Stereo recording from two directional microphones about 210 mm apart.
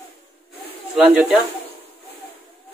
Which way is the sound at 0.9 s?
5° right (ahead or behind).